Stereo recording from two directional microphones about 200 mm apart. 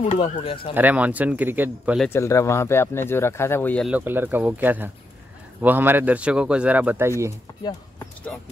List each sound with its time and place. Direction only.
0.1 s speech: 25° left (ahead or behind)
0.7 s a man's voice: 10° right (ahead or behind)
2.0 s speech: 15° left (ahead or behind)
3.9 s a man's voice: 10° right (ahead or behind)